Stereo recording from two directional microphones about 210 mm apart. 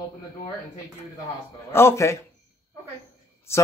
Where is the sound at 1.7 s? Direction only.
10° left (ahead or behind).